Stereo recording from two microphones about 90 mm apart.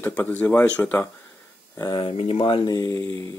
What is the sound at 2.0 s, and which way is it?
Speech, 85° left.